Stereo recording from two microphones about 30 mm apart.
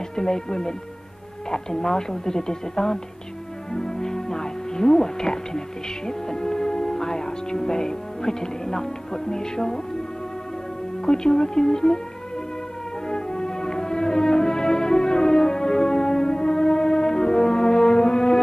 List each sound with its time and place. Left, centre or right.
0.1 s speech: left
3.7 s music: centre
11.1 s speech: left
13.1 s music: left